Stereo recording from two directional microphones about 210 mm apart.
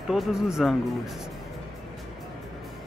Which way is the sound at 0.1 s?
Centre (ahead or behind).